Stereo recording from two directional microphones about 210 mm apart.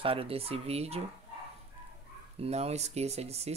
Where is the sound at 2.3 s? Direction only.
30° right (ahead or behind).